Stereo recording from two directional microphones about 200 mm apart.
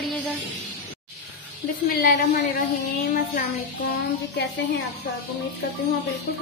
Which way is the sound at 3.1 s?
45° left (ahead or behind).